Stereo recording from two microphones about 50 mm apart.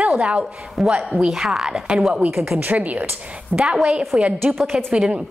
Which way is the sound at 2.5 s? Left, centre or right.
Right.